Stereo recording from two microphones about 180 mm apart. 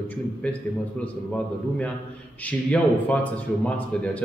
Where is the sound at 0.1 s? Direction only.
10° left (ahead or behind).